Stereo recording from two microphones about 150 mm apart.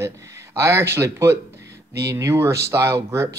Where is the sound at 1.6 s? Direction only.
90° right.